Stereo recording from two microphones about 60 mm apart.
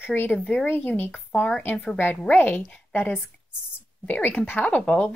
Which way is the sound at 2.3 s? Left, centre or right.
Left.